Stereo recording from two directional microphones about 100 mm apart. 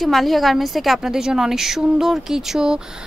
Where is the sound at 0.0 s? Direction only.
Centre (ahead or behind).